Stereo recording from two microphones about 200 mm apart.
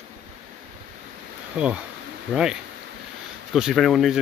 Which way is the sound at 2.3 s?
5° right (ahead or behind).